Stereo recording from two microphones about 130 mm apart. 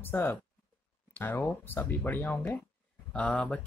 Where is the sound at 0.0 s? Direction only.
15° left (ahead or behind).